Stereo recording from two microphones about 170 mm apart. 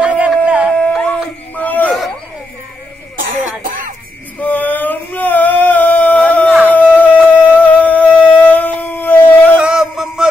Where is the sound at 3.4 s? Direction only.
55° right (ahead or behind).